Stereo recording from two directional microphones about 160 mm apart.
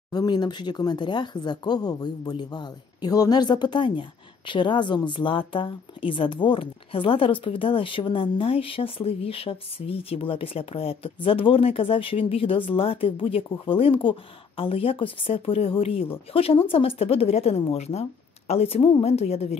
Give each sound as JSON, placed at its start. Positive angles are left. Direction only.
{"t": 0.1, "sound": "a woman's voice", "side_deg": 25}